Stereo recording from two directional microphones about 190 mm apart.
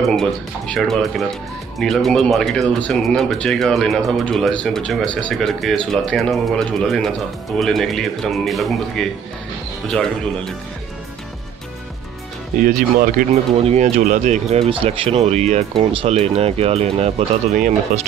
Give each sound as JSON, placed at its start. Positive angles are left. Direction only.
{"t": 0.1, "sound": "speech", "side_deg": 0}
{"t": 12.6, "sound": "speech", "side_deg": -45}
{"t": 13.6, "sound": "speech", "side_deg": -30}